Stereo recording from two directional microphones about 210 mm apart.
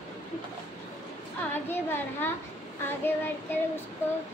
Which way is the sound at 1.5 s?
10° left (ahead or behind).